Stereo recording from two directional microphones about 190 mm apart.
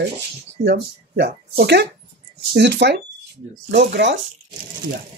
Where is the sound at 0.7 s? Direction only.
65° right (ahead or behind).